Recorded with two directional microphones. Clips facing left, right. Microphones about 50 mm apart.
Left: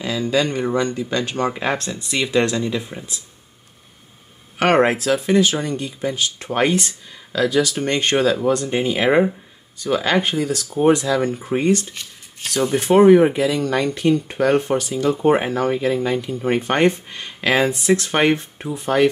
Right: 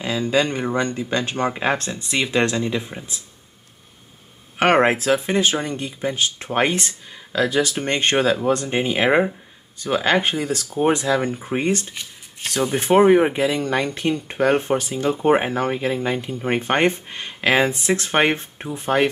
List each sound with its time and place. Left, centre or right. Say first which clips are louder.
0.0 s speech: even; right
4.6 s speech: even; right
9.8 s speech: even; right
11.8 s speech: even; centre
12.7 s speech: left 3 dB; right